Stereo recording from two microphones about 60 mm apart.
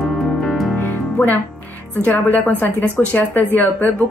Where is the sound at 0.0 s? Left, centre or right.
Centre.